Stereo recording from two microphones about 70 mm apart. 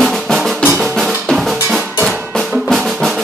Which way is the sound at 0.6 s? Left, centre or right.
Centre.